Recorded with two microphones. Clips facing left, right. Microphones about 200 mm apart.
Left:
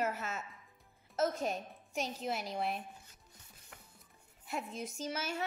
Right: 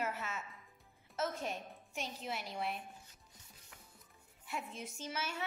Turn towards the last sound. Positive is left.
turn(degrees=40)  # may be behind; listen again after turning